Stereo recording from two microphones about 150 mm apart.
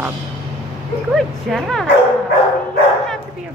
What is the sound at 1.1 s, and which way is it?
Speech, centre (ahead or behind).